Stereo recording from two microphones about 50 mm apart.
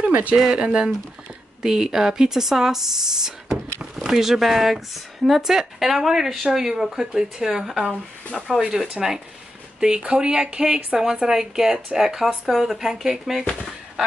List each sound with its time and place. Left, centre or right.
0.1 s speech: right
0.4 s speech: centre